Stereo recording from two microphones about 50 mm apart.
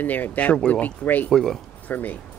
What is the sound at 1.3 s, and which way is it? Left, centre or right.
Speech, centre.